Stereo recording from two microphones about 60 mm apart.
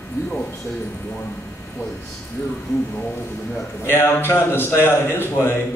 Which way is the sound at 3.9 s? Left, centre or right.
Left.